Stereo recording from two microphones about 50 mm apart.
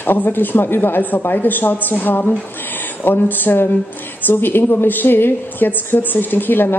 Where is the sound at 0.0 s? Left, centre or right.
Left.